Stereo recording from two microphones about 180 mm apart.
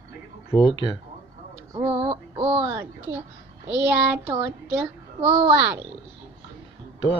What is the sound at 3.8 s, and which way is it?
Child singing, 10° right (ahead or behind).